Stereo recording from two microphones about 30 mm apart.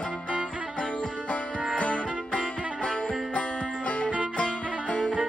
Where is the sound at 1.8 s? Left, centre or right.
Left.